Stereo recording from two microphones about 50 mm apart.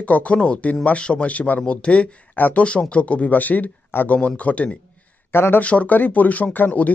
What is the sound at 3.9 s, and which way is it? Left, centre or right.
Speech, left.